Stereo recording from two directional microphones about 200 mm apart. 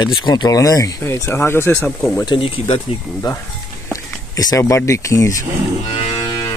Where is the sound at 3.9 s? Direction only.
15° left (ahead or behind).